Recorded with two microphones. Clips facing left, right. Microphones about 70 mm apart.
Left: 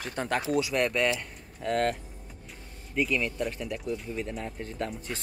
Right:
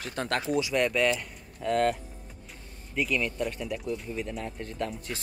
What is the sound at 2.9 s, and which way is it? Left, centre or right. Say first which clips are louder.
Speech: left 1 dB; centre.